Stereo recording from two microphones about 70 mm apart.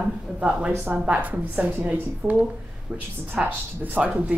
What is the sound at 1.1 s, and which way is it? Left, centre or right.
A woman's voice, right.